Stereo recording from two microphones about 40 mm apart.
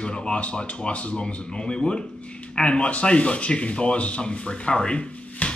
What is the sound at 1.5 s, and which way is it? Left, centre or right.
Speech, left.